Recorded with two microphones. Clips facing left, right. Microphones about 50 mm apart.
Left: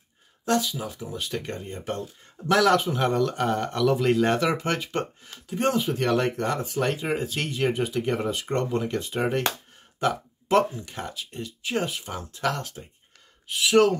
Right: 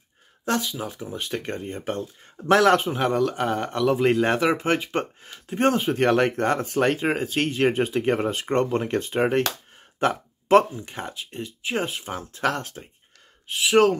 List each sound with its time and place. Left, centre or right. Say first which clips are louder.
0.5 s speech: left 1 dB; right
2.9 s speech: right 1 dB; centre
5.5 s speech: right 3 dB; right
9.9 s a sound: right 2 dB; right
10.8 s speech: right 1 dB; right